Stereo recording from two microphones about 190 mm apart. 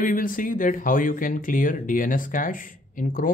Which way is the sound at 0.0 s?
45° left (ahead or behind).